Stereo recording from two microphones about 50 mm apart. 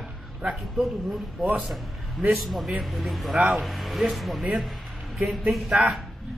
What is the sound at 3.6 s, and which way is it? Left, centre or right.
Speech, centre.